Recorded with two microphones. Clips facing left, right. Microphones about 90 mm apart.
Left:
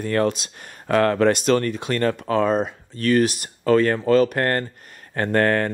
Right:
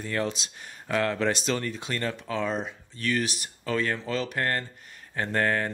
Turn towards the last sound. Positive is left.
turn(degrees=60)  # may be behind; listen again after turning